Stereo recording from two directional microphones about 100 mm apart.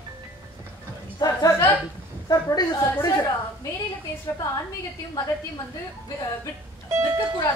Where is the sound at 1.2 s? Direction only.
40° left (ahead or behind).